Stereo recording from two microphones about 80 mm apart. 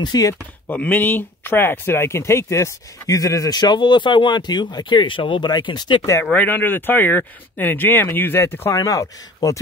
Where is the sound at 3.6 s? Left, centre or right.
Left.